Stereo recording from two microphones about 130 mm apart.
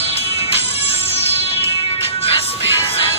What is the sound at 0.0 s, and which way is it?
Music, 50° left (ahead or behind).